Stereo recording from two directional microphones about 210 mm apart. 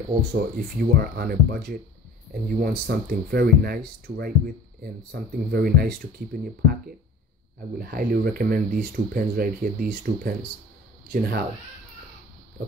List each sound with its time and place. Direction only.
0.3 s speech: 45° right (ahead or behind)